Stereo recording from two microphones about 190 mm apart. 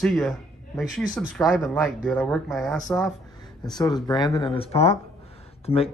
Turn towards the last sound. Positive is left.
turn(degrees=30)  # may be behind; listen again after turning